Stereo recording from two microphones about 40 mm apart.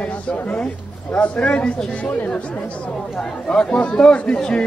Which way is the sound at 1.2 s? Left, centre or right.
Left.